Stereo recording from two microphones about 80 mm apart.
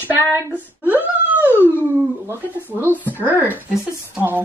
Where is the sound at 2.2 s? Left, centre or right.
Right.